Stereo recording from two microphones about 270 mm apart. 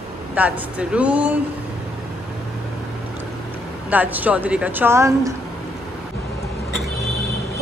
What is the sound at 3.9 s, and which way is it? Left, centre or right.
A woman's voice, centre.